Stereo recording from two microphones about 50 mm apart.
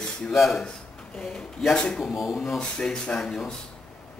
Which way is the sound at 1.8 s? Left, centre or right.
Centre.